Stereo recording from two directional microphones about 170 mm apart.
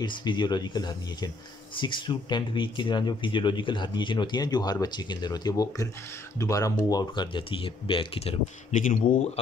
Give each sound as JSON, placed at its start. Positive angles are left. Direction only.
{"t": 0.0, "sound": "speech", "side_deg": 25}
{"t": 8.7, "sound": "speech", "side_deg": 50}